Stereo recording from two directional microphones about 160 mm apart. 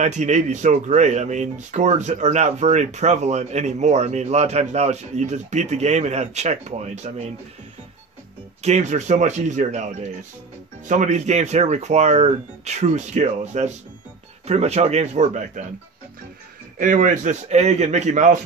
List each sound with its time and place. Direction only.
0.0 s speech: 45° right (ahead or behind)
8.6 s speech: 45° right (ahead or behind)
10.9 s speech: 50° right (ahead or behind)
16.7 s speech: 55° right (ahead or behind)